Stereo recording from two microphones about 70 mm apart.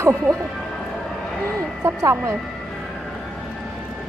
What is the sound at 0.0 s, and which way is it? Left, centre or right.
Speech, right.